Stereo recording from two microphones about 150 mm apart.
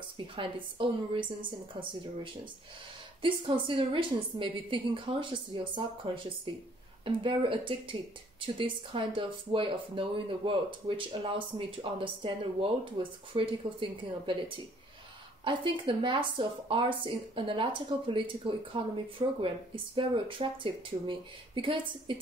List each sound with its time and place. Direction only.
0.4 s speech: 35° right (ahead or behind)
3.2 s speech: 35° right (ahead or behind)